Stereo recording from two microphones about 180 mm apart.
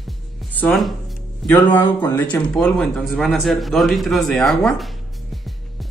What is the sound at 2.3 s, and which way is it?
Speech, 5° left (ahead or behind).